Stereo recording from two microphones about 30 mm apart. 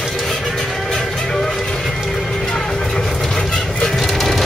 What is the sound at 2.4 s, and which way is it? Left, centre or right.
Vehicle, centre.